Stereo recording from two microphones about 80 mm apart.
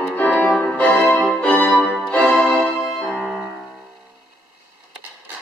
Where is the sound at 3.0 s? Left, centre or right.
Centre.